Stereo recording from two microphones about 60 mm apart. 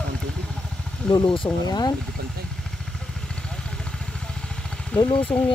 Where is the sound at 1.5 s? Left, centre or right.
Left.